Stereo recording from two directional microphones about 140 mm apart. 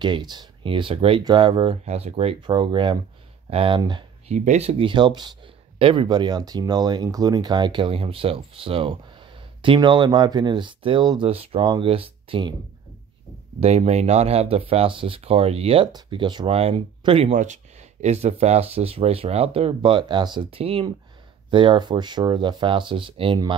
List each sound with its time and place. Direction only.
0.0 s speech: 30° right (ahead or behind); by 2.3 s 50° right (ahead or behind)
2.4 s speech: 35° right (ahead or behind)
4.3 s speech: 50° right (ahead or behind)
13.6 s speech: 45° right (ahead or behind)
16.4 s speech: 45° right (ahead or behind)
17.3 s speech: 60° right (ahead or behind); by 23.5 s 35° right (ahead or behind)